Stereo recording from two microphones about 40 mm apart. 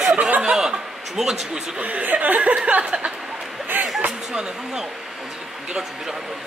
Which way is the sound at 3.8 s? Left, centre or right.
Right.